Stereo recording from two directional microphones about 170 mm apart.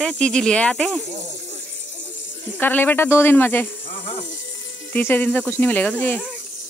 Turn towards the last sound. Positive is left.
turn(degrees=10)  # may be behind; listen again after turning